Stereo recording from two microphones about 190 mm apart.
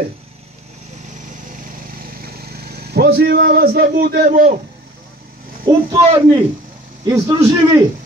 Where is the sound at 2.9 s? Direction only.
60° right (ahead or behind).